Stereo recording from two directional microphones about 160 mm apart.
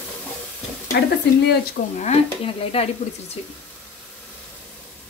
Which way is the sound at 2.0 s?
40° left (ahead or behind).